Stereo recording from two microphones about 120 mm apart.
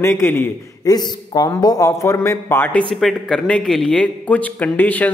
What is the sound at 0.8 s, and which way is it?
A man's voice, 35° left (ahead or behind).